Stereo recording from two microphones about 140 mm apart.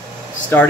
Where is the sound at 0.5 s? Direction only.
15° left (ahead or behind).